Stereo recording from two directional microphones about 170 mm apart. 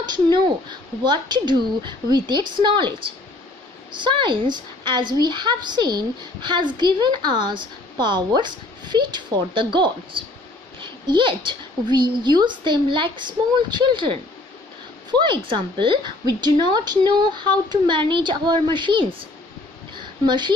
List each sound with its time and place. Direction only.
0.0 s a woman's voice: 25° right (ahead or behind)